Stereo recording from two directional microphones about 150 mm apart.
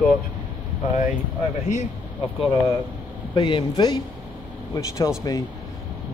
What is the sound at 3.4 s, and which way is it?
Speech, 35° left (ahead or behind).